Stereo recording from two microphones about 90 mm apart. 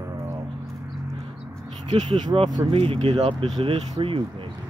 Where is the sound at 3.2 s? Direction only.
80° right.